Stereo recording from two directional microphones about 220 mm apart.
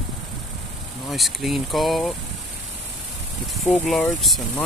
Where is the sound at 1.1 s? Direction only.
Centre (ahead or behind).